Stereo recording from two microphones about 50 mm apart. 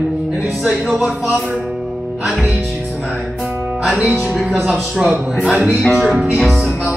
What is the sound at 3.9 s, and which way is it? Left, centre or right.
Music, right.